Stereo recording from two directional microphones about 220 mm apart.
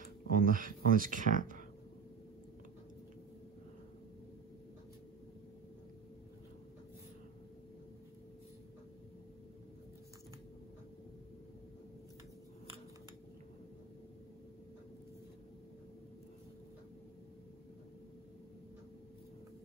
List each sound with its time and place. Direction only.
0.4 s speech: 40° right (ahead or behind)